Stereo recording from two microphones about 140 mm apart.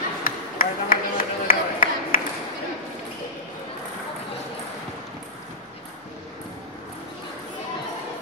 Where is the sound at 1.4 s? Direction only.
80° left.